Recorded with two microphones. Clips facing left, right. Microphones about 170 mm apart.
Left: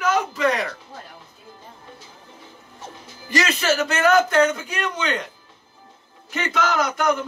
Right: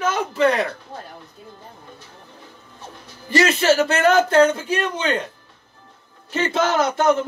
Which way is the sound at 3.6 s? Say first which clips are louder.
Right 4 dB; 30° right (ahead or behind).